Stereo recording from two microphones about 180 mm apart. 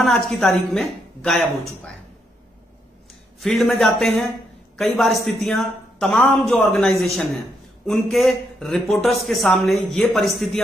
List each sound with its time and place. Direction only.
0.0 s a woman's voice: centre (ahead or behind)
1.4 s speech: 15° right (ahead or behind)
3.3 s a woman's voice: centre (ahead or behind)